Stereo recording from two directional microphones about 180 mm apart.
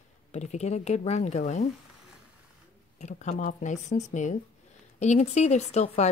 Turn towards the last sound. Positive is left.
turn(degrees=40)  # may be behind; listen again after turning